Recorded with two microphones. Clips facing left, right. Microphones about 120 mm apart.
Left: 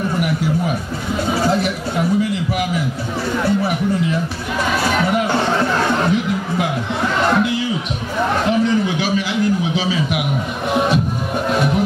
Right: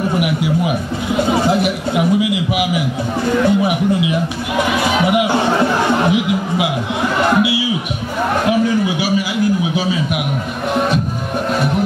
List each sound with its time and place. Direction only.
0.2 s speech: 10° right (ahead or behind)
8.5 s a sound: 5° right (ahead or behind)
10.7 s speech: centre (ahead or behind)